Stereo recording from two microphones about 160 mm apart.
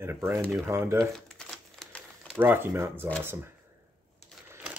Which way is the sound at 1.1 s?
5° left (ahead or behind).